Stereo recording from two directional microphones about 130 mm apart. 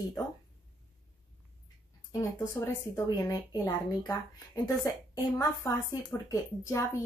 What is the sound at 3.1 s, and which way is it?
A woman's voice, 25° left (ahead or behind).